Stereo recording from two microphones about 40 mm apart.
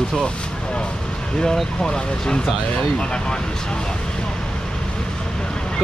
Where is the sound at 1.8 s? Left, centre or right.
Centre.